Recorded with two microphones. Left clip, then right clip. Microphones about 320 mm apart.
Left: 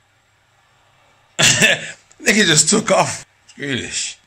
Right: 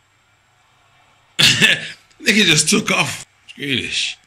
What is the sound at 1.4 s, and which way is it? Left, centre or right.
Throat clearing, centre.